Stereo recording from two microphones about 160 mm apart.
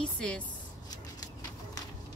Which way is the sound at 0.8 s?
20° left (ahead or behind).